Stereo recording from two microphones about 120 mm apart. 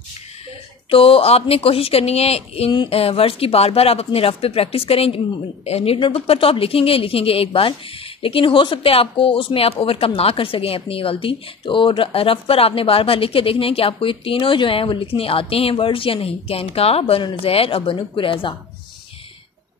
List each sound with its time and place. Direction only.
0.8 s speech: 50° left (ahead or behind)